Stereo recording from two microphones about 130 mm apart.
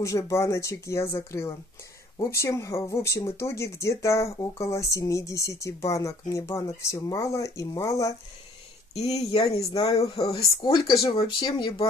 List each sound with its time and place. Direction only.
0.0 s speech: 25° left (ahead or behind)
8.9 s speech: 55° left (ahead or behind)
10.3 s speech: 30° left (ahead or behind)